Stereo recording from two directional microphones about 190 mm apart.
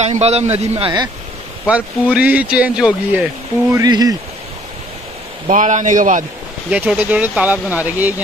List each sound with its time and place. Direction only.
0.0 s a man's voice: 35° right (ahead or behind)
1.7 s speech: 5° right (ahead or behind)
3.7 s speech: 20° right (ahead or behind)
5.5 s a man's voice: 40° right (ahead or behind)
6.7 s speech: 5° right (ahead or behind)